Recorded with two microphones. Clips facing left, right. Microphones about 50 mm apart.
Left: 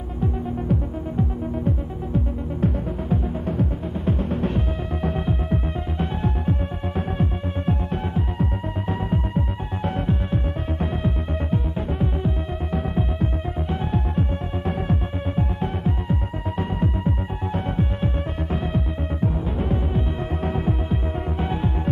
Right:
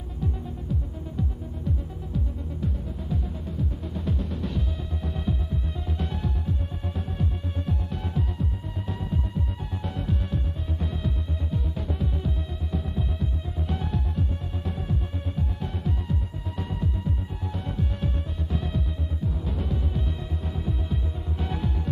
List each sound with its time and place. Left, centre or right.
0.7 s music: left
4.0 s music: left
12.7 s music: left
13.7 s music: left
14.7 s music: left
20.4 s music: left